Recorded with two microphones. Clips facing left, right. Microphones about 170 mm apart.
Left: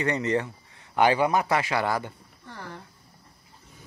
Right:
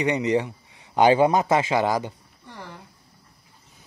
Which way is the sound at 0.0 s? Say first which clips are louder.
Right 3 dB; 15° right (ahead or behind).